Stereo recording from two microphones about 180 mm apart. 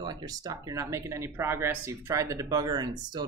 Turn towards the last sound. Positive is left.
turn(degrees=-25)  # may be behind; listen again after turning